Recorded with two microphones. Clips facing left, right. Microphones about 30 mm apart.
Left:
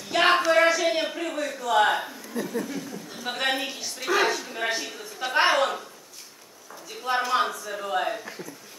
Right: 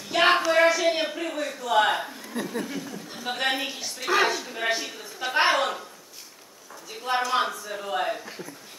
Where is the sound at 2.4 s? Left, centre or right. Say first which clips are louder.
Left 1 dB; right.